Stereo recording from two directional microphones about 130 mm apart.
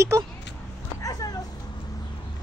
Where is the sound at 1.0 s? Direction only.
30° left (ahead or behind).